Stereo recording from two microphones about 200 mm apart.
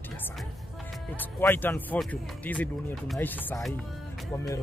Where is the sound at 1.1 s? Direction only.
10° left (ahead or behind).